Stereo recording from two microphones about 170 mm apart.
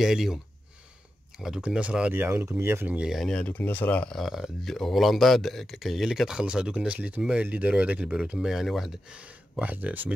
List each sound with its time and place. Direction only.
0.0 s speech: centre (ahead or behind)
1.4 s speech: 5° right (ahead or behind)